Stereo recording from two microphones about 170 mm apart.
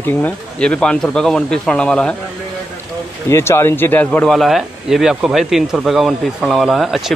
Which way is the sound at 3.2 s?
15° left (ahead or behind).